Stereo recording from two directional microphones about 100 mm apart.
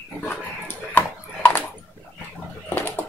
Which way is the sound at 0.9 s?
20° left (ahead or behind).